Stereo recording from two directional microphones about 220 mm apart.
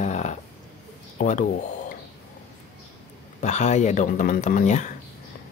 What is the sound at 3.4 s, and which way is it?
Speech, 30° left (ahead or behind).